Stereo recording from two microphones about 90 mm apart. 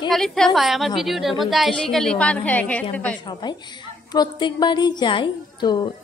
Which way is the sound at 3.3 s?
55° left (ahead or behind).